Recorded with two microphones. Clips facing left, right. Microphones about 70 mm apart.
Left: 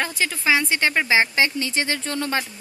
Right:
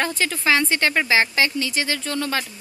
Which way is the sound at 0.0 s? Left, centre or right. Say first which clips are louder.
Right 1 dB; centre.